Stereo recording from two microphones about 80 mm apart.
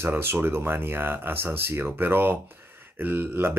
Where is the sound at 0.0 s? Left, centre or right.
Right.